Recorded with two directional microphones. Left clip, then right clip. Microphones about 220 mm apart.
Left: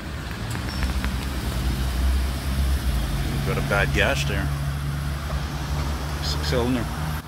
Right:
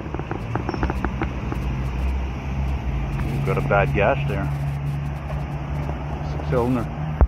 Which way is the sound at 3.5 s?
20° left (ahead or behind).